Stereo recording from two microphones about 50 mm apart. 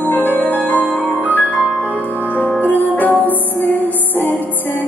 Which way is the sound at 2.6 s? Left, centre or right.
Left.